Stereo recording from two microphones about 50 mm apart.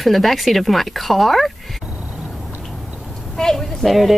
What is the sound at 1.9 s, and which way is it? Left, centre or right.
Duck, right.